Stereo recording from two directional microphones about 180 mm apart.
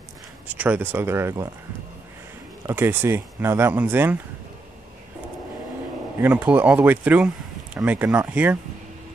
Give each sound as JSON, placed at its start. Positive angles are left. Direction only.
{"t": 0.5, "sound": "speech", "side_deg": -10}
{"t": 2.6, "sound": "speech", "side_deg": -10}
{"t": 6.2, "sound": "speech", "side_deg": -10}